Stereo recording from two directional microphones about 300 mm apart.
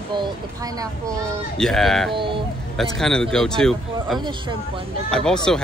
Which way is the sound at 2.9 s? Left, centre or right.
Centre.